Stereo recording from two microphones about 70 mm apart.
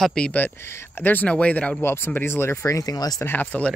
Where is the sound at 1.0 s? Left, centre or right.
Left.